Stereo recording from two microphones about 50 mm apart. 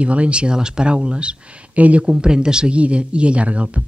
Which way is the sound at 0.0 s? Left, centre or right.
Right.